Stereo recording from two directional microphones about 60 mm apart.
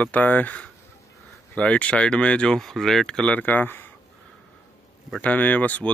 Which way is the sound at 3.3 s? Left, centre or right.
Left.